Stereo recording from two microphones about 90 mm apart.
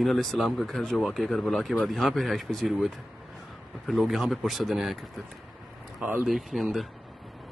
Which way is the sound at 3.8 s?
Centre (ahead or behind).